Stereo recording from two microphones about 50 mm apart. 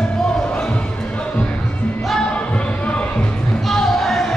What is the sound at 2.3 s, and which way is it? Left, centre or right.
Music, left.